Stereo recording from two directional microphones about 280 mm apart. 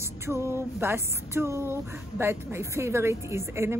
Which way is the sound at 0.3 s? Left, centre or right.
Centre.